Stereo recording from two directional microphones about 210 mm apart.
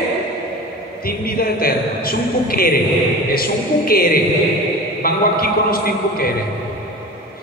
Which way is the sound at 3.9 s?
45° left (ahead or behind).